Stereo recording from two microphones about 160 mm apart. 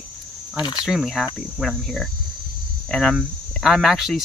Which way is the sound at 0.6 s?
25° left (ahead or behind).